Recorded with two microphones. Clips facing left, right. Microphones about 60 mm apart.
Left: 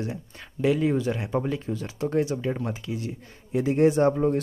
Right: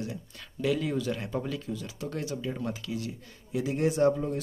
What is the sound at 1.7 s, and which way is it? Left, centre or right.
Speech, left.